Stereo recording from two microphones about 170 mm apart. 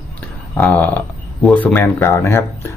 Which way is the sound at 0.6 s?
10° left (ahead or behind).